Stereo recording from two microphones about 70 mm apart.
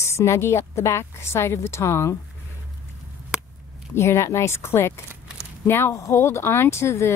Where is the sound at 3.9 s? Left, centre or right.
Left.